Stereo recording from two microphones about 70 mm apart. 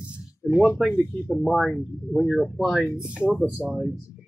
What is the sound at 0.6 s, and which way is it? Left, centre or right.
Speech, centre.